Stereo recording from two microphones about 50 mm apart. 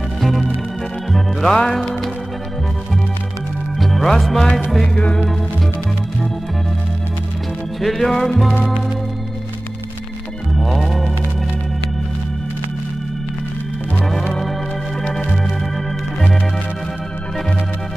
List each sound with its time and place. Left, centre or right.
0.2 s music: centre
1.6 s music: centre
3.8 s music: centre
4.9 s music: centre
7.8 s music: centre
10.5 s music: centre